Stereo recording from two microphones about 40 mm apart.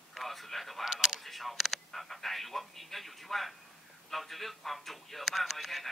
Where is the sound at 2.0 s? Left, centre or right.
Centre.